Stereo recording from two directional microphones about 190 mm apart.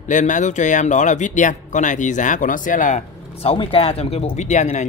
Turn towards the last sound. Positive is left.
turn(degrees=40)  # may be behind; listen again after turning